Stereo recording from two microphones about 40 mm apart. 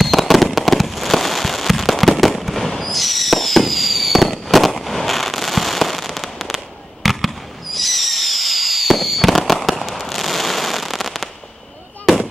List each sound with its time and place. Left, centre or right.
0.0 s fireworks: centre